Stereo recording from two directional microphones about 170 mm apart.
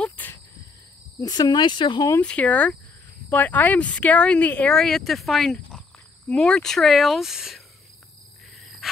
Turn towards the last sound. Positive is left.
turn(degrees=0)  # may be behind; listen again after turning